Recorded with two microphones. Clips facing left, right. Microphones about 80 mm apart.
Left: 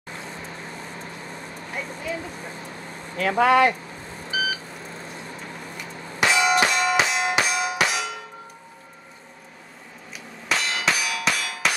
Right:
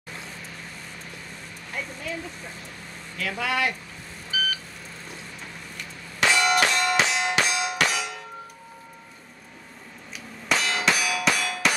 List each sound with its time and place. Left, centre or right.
1.7 s speech: centre
3.2 s speech: left
4.3 s beep: centre
5.8 s a sound: centre
6.6 s music: centre
10.5 s clang: centre